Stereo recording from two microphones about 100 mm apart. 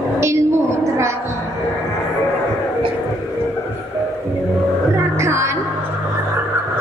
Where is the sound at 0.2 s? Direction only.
30° right (ahead or behind).